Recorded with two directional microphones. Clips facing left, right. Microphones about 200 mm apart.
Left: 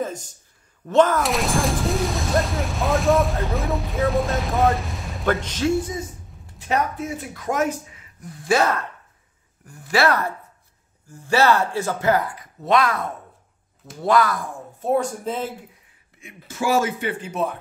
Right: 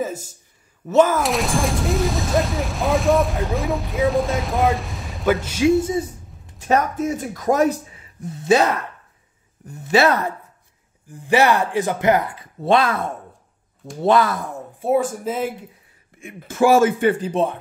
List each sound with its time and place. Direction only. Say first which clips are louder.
0.0 s a sound: right 2 dB; 5° right (ahead or behind)
0.8 s speech: right 1 dB; 5° right (ahead or behind)
5.8 s a sound: right 6 dB; 25° right (ahead or behind)
6.7 s speech: right 4 dB; 40° right (ahead or behind); by 14.6 s 25° right (ahead or behind)
14.8 s speech: right 2 dB; 5° right (ahead or behind)
16.2 s speech: right 10 dB; 50° right (ahead or behind)
17.3 s speech: right 4 dB; 30° right (ahead or behind)